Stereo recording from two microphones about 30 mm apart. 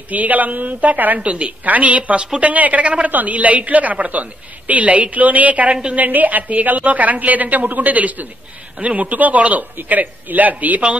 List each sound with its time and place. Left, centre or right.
0.1 s a man's voice: right
1.2 s a woman's voice: right
3.1 s a woman's voice: right
3.3 s a man's voice: right
5.9 s a woman's voice: right